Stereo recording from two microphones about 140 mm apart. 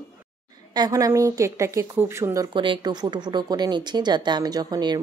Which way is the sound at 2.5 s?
35° right (ahead or behind).